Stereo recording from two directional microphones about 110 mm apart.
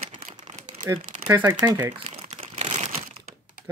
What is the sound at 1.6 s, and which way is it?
Speech, 35° right (ahead or behind).